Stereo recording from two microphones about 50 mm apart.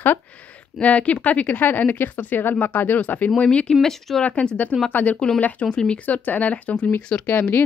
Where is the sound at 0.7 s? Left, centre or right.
Left.